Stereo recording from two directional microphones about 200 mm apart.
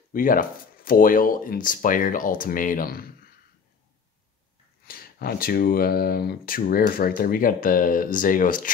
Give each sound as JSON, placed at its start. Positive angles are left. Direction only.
{"t": 0.1, "sound": "speech", "side_deg": 45}
{"t": 4.8, "sound": "speech", "side_deg": 50}